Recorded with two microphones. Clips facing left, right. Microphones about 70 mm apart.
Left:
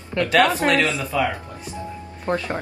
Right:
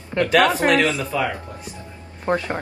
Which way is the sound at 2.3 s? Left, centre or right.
Right.